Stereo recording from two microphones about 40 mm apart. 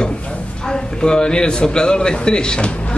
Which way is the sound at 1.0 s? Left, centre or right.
Centre.